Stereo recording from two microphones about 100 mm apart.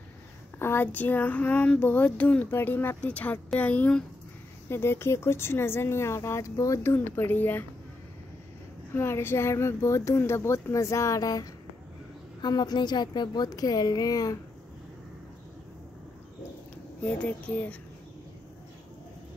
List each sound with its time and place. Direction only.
0.6 s speech: 20° left (ahead or behind)
4.6 s speech: 25° left (ahead or behind)
8.9 s a woman's voice: 25° left (ahead or behind)
17.0 s speech: 15° left (ahead or behind)